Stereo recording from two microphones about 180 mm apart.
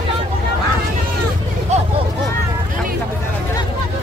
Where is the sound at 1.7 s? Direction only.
40° right (ahead or behind).